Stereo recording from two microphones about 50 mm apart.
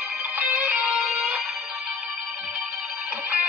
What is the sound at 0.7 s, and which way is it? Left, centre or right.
Music, right.